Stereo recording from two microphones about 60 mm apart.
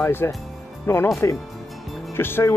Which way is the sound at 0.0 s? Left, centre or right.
Left.